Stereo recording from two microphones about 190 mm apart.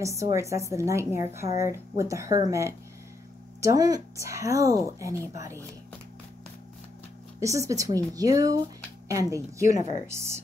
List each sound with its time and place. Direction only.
0.0 s speech: 15° right (ahead or behind)
7.3 s speech: 15° right (ahead or behind)